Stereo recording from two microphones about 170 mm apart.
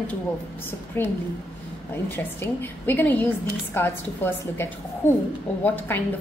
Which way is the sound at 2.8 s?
10° left (ahead or behind).